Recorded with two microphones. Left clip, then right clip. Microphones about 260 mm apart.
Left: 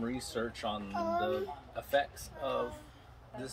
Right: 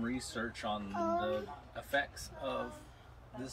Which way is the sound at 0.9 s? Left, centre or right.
Left.